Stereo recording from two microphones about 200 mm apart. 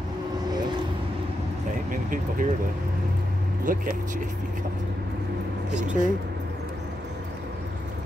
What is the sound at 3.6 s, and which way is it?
Speech, 45° right (ahead or behind).